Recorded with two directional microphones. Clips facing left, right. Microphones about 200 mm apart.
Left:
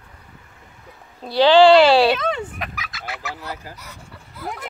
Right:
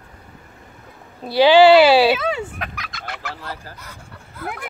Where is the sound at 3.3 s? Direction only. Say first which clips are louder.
Left 1 dB; 15° left (ahead or behind).